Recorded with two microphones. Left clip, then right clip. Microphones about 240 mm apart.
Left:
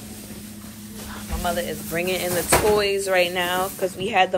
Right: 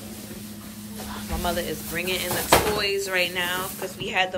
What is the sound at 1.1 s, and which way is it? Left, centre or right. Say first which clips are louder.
Snake: left 2 dB; centre.